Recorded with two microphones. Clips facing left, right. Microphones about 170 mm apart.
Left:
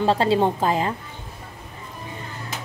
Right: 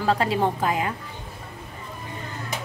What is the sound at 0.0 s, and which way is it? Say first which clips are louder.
Speech: left 3 dB; 30° left (ahead or behind).